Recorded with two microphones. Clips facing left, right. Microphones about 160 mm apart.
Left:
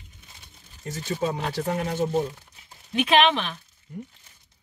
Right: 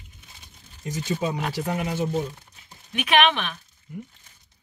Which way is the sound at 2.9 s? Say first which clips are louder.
Left 1 dB; 30° left (ahead or behind).